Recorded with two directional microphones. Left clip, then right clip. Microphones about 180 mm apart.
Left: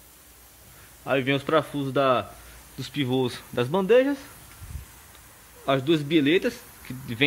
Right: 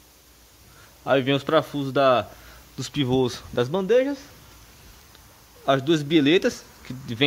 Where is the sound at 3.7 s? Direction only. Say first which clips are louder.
Left 2 dB; 10° left (ahead or behind).